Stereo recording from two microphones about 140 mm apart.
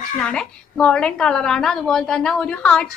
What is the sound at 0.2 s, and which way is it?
A woman's voice, 5° left (ahead or behind).